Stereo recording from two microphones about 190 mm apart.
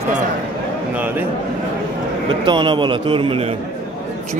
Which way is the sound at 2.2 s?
25° right (ahead or behind).